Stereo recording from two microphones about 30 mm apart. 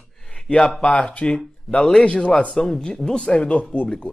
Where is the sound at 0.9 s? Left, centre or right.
Left.